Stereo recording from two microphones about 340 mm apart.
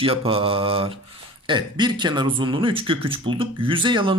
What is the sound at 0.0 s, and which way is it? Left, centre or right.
Speech, centre.